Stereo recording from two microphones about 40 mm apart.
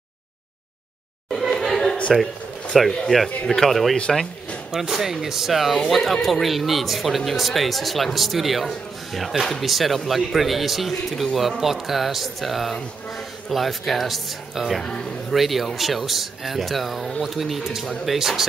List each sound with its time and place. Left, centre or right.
1.6 s a sound: centre
2.9 s speech: centre
4.6 s speech: centre
14.8 s a man's voice: left
15.3 s speech: centre